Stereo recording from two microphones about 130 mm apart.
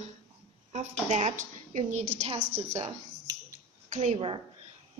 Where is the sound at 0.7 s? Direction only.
65° right (ahead or behind).